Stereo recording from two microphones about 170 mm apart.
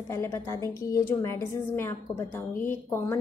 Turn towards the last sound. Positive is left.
turn(degrees=15)  # may be behind; listen again after turning